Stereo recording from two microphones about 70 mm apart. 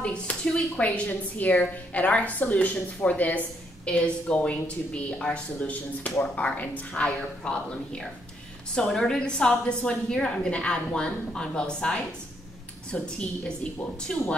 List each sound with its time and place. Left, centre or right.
0.0 s a woman's voice: centre